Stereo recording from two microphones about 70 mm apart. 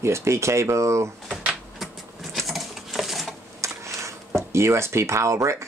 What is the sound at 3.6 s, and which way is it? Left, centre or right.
Speech, right.